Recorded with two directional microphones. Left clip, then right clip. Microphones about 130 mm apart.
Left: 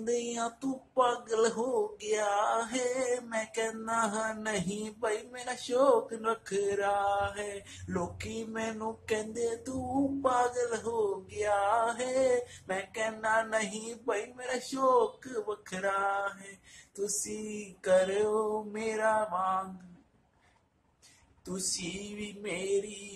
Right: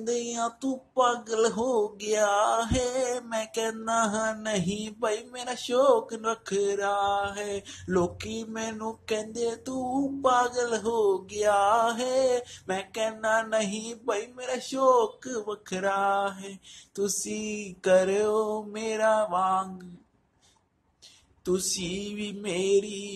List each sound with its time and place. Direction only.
0.3 s speech: 20° right (ahead or behind); by 19.6 s 40° right (ahead or behind)
21.5 s speech: 35° right (ahead or behind)